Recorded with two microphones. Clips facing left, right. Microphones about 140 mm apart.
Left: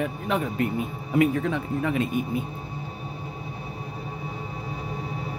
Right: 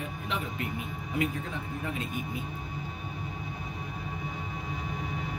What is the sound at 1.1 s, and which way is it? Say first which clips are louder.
Speech: left 10 dB; 80° left.